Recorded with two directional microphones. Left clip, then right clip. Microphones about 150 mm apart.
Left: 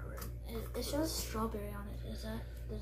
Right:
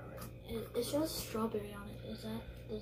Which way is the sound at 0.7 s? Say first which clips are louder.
Right 1 dB; 15° left (ahead or behind).